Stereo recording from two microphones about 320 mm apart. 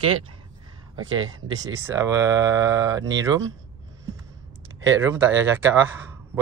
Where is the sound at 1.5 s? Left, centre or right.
Centre.